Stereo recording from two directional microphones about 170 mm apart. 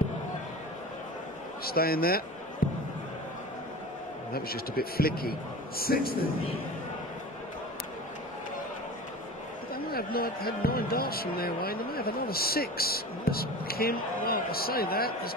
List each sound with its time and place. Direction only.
1.6 s speech: 60° left (ahead or behind)
2.6 s a sound: 60° left (ahead or behind)
4.3 s speech: 60° left (ahead or behind)
9.8 s speech: 60° left (ahead or behind)